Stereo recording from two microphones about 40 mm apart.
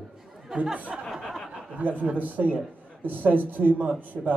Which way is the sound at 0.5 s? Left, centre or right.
Centre.